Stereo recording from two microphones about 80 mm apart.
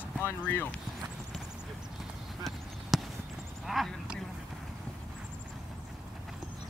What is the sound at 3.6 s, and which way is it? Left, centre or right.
Clip-clop, centre.